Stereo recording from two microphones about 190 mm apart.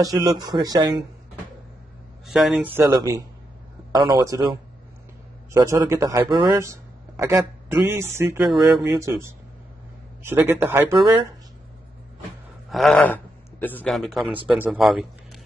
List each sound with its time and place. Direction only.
0.0 s speech: 20° right (ahead or behind)
2.3 s a man's voice: centre (ahead or behind)
12.7 s a man's voice: 5° left (ahead or behind)